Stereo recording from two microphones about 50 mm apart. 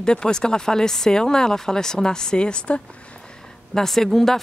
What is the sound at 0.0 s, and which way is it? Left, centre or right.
Speech, centre.